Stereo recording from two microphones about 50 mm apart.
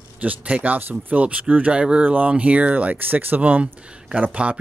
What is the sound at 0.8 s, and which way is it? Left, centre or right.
Speech, right.